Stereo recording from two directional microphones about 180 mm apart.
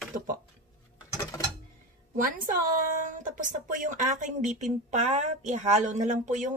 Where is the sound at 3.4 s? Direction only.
45° right (ahead or behind).